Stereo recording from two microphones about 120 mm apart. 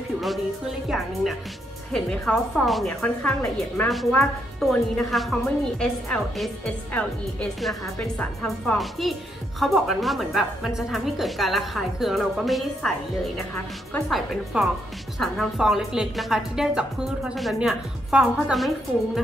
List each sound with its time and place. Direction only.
0.2 s a woman's voice: centre (ahead or behind)
8.7 s a woman's voice: centre (ahead or behind)